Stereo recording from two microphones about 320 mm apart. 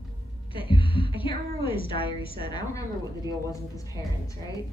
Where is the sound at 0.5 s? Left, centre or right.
Centre.